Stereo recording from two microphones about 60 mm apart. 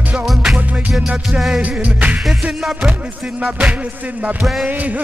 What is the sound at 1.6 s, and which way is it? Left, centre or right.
Music, right.